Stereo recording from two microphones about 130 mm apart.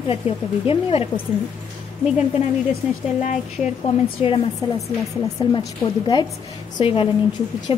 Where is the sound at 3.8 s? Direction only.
40° left (ahead or behind).